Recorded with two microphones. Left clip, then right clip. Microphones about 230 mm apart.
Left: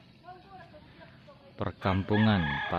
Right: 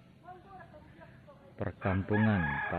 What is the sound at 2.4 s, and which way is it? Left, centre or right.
Chicken, left.